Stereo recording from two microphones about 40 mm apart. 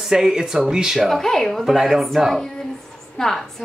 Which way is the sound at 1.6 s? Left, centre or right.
Centre.